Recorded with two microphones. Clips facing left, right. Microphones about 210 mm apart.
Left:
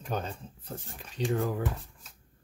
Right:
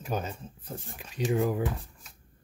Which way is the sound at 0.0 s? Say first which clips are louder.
Right 1 dB; 5° right (ahead or behind).